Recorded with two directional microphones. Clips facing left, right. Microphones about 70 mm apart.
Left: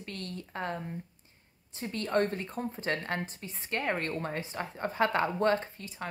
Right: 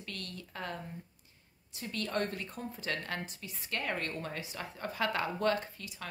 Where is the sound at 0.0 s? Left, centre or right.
Left.